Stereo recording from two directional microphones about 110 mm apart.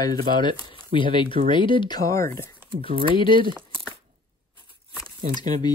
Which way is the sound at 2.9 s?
55° right (ahead or behind).